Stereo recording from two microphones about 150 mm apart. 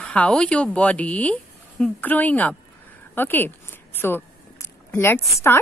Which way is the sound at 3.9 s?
15° left (ahead or behind).